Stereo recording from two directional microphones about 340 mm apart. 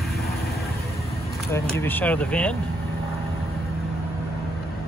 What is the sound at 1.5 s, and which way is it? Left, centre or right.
Speech, centre.